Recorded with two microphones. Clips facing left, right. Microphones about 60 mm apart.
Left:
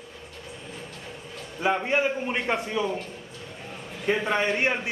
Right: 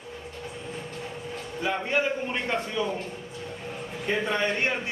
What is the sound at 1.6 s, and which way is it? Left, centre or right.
A man's voice, left.